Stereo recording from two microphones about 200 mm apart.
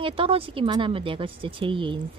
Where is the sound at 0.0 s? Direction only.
30° right (ahead or behind).